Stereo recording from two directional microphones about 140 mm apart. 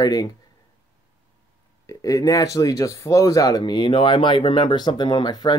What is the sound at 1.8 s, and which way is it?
Speech, 25° left (ahead or behind).